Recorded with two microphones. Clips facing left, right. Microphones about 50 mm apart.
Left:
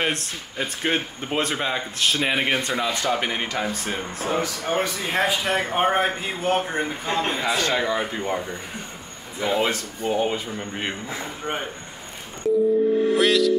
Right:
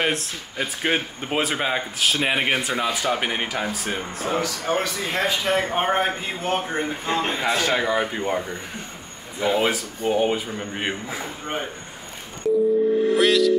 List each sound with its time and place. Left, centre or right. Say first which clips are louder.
0.0 s speech: right 1 dB; centre
4.4 s a man's voice: even; left
5.2 s speech: right 1 dB; centre
13.2 s music: right 2 dB; centre